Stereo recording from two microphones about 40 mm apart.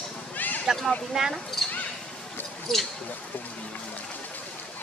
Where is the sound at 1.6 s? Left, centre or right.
Centre.